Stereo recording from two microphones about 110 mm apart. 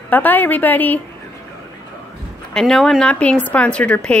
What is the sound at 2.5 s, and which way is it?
Speech, 5° left (ahead or behind).